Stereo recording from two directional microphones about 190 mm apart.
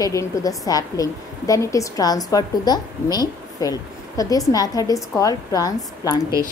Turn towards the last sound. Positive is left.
turn(degrees=20)  # may be behind; listen again after turning